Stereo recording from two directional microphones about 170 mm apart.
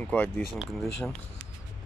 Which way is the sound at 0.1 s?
10° left (ahead or behind).